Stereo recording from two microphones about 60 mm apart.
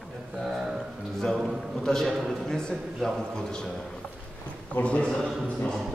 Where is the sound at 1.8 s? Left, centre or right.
Centre.